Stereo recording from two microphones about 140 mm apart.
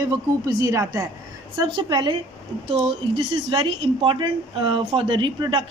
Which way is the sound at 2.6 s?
45° right (ahead or behind).